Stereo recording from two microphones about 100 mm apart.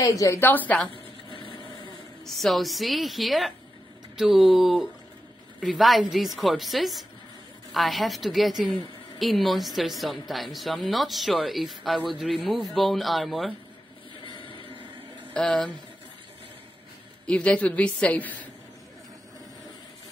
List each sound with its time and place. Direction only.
0.0 s a woman's voice: 35° left (ahead or behind)
0.4 s a woman's voice: 20° left (ahead or behind)
1.3 s vehicle: 60° left (ahead or behind)
2.2 s a woman's voice: centre (ahead or behind)
15.3 s a woman's voice: 10° left (ahead or behind)
17.3 s a woman's voice: 15° left (ahead or behind)